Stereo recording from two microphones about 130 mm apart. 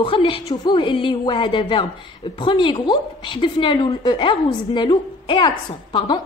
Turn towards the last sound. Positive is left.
turn(degrees=35)  # may be behind; listen again after turning